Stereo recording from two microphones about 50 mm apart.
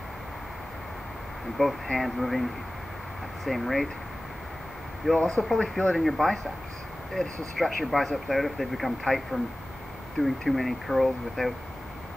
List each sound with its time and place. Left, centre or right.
1.6 s speech: centre
5.1 s speech: centre
5.9 s speech: centre